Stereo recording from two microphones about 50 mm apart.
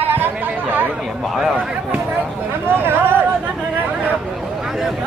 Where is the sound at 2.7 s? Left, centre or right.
Right.